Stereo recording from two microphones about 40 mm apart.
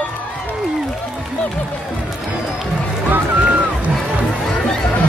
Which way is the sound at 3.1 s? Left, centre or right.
Right.